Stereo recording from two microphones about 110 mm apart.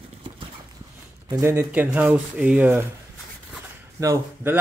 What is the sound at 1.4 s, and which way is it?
Speech, 25° right (ahead or behind).